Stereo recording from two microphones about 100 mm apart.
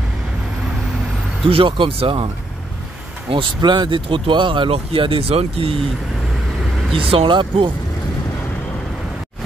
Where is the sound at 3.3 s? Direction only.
55° right (ahead or behind); by 5.8 s 75° right (ahead or behind).